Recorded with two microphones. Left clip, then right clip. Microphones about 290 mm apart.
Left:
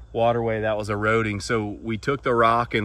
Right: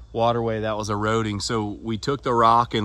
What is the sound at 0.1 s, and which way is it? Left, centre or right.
Speech, centre.